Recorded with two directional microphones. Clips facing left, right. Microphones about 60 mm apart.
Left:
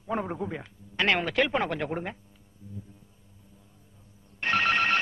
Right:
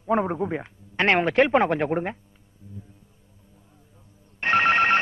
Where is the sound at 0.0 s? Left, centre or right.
Right.